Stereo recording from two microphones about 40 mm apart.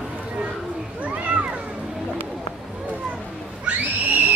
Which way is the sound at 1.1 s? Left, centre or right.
Right.